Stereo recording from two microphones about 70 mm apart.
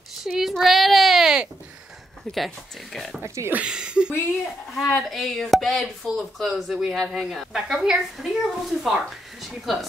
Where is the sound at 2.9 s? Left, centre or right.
Centre.